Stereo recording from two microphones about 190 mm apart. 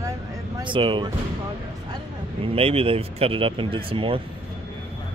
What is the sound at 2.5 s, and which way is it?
Speech, 30° right (ahead or behind).